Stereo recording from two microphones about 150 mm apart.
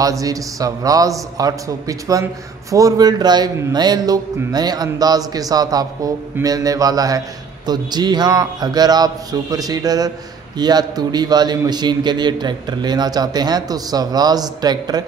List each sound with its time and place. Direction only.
0.0 s a man's voice: 25° right (ahead or behind)